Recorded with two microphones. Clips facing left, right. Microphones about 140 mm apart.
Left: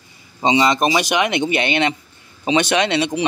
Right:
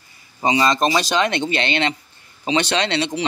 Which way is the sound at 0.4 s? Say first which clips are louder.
Left 2 dB; 20° left (ahead or behind).